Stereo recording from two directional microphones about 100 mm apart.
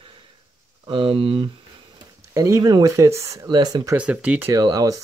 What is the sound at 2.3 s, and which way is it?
Speech, 35° right (ahead or behind).